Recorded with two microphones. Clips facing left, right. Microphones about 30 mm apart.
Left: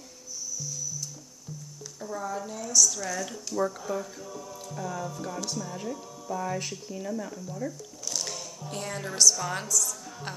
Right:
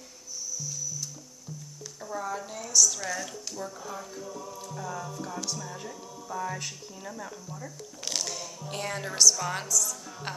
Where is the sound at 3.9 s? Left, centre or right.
Centre.